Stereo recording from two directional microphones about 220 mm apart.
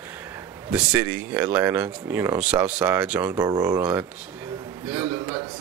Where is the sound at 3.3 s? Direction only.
15° right (ahead or behind).